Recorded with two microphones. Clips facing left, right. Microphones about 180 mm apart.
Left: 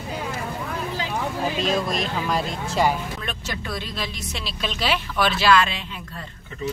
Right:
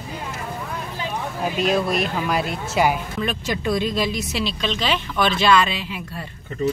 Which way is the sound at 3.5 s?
15° right (ahead or behind).